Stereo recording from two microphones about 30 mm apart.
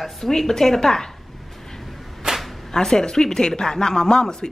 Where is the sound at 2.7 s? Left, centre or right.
Centre.